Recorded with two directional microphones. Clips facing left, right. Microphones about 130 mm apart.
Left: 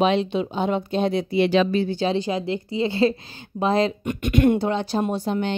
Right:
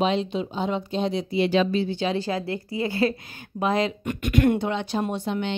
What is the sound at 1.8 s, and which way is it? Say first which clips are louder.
Speech: left 3 dB; 40° left (ahead or behind).